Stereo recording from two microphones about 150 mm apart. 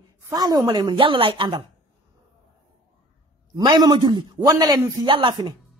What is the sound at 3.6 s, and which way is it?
A man's voice, 25° right (ahead or behind).